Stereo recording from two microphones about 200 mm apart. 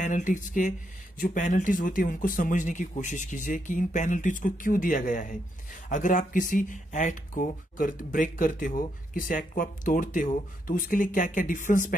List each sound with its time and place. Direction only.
0.0 s speech: 40° left (ahead or behind)